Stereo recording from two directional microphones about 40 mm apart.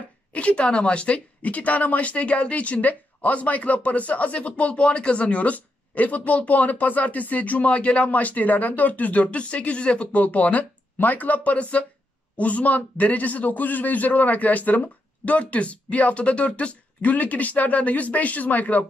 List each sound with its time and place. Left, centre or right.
0.3 s speech: left